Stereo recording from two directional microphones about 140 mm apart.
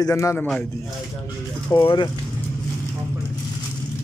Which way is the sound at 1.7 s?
35° left (ahead or behind).